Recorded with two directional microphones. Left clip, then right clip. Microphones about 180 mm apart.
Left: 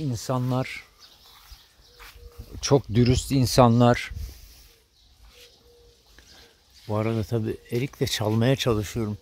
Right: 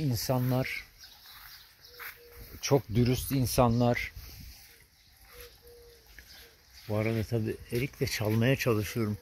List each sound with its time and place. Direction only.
0.1 s speech: 20° left (ahead or behind)
0.5 s speech: 30° left (ahead or behind)
2.6 s speech: 50° left (ahead or behind)
6.9 s speech: 35° left (ahead or behind)